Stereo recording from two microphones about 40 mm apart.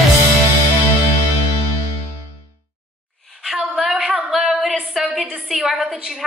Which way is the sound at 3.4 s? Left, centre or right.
Centre.